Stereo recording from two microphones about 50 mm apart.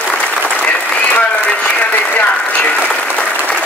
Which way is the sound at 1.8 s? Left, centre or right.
Left.